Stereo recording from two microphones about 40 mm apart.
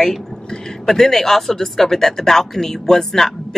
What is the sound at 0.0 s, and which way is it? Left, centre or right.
A woman's voice, centre.